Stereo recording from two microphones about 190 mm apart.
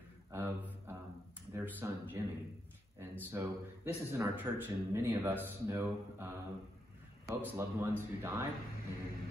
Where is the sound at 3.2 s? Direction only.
10° right (ahead or behind).